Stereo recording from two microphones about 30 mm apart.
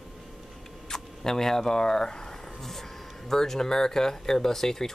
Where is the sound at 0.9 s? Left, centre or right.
Centre.